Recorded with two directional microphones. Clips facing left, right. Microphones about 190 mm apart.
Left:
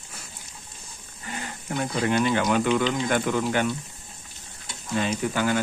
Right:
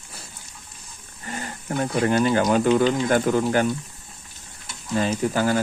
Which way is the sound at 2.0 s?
40° right (ahead or behind).